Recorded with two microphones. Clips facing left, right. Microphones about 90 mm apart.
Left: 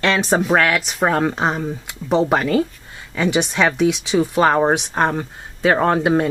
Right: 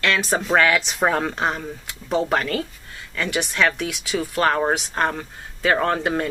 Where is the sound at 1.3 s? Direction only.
15° left (ahead or behind).